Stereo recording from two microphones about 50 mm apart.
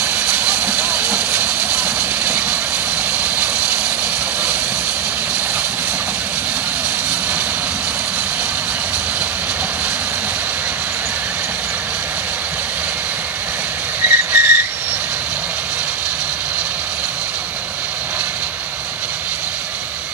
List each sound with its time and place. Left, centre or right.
0.0 s vehicle: right
3.2 s vehicle: right
14.0 s whistle: right